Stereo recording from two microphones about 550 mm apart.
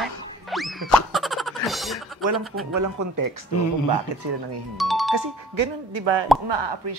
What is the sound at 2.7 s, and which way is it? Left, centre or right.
Speech, right.